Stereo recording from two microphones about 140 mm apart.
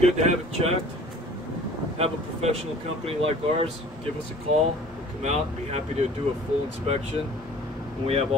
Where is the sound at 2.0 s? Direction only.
45° right (ahead or behind).